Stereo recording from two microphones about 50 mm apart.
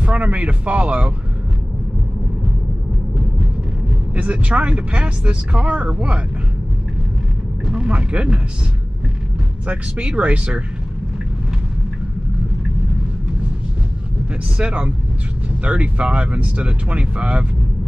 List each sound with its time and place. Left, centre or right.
0.0 s speech: right
4.1 s speech: right
7.6 s speech: centre
9.7 s speech: right
14.6 s speech: right